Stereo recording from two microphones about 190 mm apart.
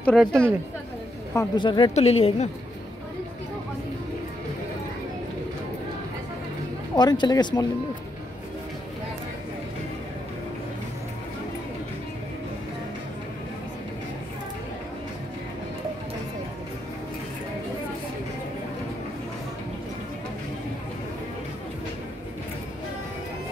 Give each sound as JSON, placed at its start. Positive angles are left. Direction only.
{"t": 0.0, "sound": "speech", "side_deg": 0}
{"t": 1.3, "sound": "speech", "side_deg": 20}
{"t": 7.0, "sound": "speech", "side_deg": 20}